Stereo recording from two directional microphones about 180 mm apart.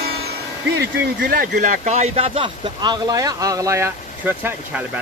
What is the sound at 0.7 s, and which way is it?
Speech, 70° right (ahead or behind).